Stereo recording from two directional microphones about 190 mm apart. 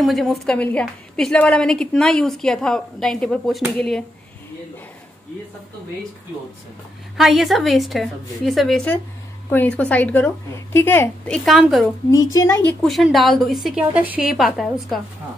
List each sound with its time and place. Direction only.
0.0 s a woman's voice: centre (ahead or behind)
7.2 s a woman's voice: centre (ahead or behind)
12.1 s a woman's voice: 20° left (ahead or behind)
12.8 s a woman's voice: centre (ahead or behind)